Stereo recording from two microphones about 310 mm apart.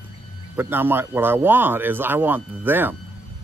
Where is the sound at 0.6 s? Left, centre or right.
Centre.